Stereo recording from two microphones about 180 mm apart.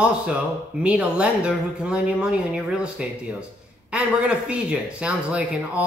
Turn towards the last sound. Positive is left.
turn(degrees=-5)  # may be behind; listen again after turning